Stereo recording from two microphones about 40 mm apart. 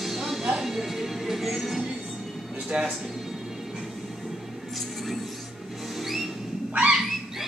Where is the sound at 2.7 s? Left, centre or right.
Right.